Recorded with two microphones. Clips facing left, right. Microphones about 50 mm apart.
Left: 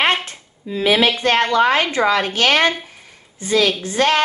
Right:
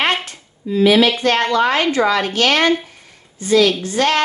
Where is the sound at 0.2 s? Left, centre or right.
Left.